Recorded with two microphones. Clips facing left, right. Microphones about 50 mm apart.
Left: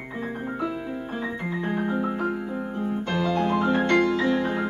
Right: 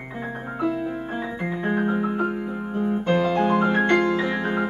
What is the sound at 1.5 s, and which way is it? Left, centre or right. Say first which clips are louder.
Piano: right 4 dB; right.